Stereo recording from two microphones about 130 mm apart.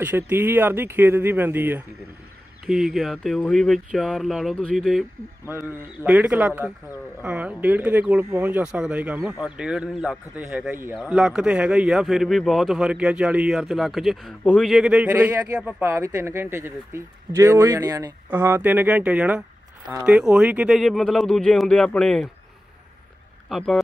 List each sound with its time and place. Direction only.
0.0 s speech: 15° right (ahead or behind)
2.6 s speech: 5° right (ahead or behind)
5.5 s speech: 20° right (ahead or behind)
10.7 s speech: 20° right (ahead or behind)
11.0 s speech: 5° right (ahead or behind)
15.0 s speech: 20° right (ahead or behind); by 22.3 s 5° left (ahead or behind)
23.5 s speech: 5° left (ahead or behind)